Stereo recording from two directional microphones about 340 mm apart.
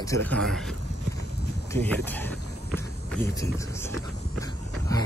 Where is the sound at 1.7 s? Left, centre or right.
Centre.